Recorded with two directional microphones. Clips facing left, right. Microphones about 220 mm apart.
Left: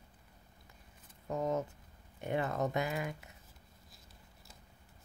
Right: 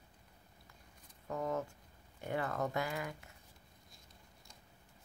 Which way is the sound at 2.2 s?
20° left (ahead or behind).